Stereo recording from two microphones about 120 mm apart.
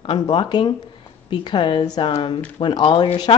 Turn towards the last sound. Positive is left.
turn(degrees=45)  # may be behind; listen again after turning